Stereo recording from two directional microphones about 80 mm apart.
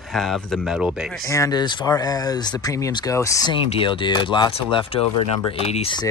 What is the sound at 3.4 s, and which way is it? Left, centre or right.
Speech, left.